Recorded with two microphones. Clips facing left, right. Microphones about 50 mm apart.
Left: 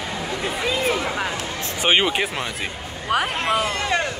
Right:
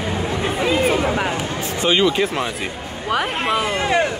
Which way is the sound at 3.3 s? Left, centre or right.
Centre.